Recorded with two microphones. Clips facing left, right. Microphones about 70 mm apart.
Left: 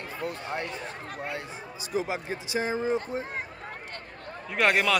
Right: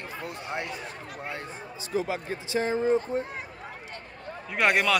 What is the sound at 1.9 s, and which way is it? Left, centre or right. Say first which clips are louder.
Speech: right 1 dB; centre.